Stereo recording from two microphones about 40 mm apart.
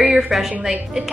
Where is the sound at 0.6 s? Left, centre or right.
Centre.